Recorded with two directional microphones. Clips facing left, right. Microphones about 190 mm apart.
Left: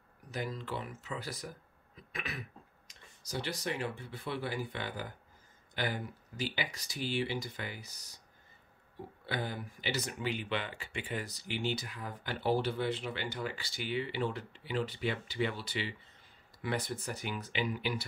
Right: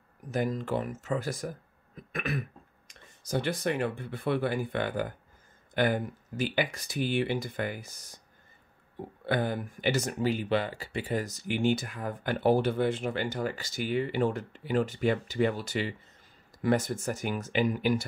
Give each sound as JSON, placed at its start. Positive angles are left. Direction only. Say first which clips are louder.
{"t": 0.3, "sound": "speech", "louder": "right 9 dB", "side_deg": -45}
{"t": 9.2, "sound": "speech", "louder": "right 9 dB", "side_deg": -55}